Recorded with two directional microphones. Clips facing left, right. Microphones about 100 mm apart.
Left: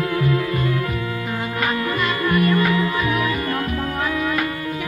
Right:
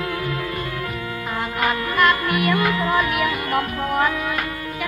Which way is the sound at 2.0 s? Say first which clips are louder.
Right 3 dB; 90° right.